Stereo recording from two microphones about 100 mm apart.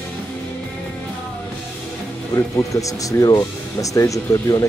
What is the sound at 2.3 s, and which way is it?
Speech, 35° left (ahead or behind).